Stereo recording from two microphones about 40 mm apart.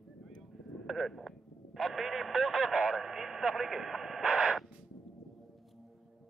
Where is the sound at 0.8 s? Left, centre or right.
Centre.